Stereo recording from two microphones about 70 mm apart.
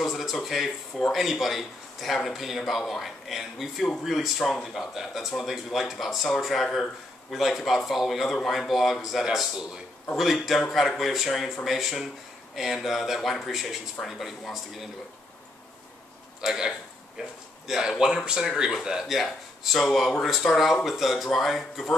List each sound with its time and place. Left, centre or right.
0.0 s speech: centre
16.3 s a man's voice: centre